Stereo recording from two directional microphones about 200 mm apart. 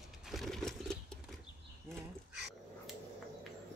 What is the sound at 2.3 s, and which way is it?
Dog, centre (ahead or behind).